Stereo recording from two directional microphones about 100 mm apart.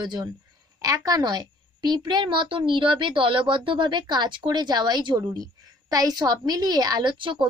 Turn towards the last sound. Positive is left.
turn(degrees=-55)  # may be behind; listen again after turning